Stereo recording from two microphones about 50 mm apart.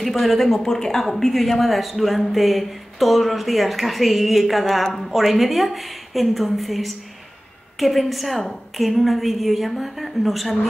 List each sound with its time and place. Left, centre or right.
0.0 s a woman's voice: centre